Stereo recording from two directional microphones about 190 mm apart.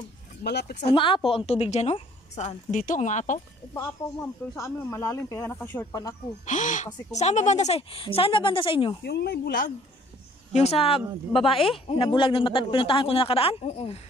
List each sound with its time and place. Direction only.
0.4 s speech: 60° left (ahead or behind)
0.9 s a woman's voice: 25° left (ahead or behind)
4.2 s speech: 15° left (ahead or behind)
6.4 s a woman's voice: 40° left (ahead or behind)
9.0 s speech: 60° left (ahead or behind)
10.5 s a woman's voice: 35° left (ahead or behind)